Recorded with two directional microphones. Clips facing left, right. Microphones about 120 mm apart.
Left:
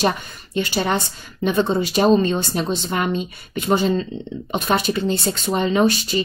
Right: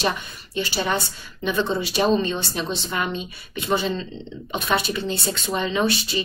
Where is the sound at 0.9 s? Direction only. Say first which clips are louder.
Left 3 dB; 45° left (ahead or behind).